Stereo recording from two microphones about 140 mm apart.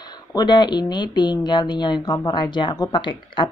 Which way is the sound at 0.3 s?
30° left (ahead or behind).